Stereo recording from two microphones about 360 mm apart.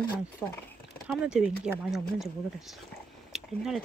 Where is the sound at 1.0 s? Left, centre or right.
Centre.